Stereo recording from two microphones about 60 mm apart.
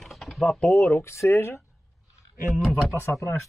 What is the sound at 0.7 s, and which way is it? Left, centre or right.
Speech, left.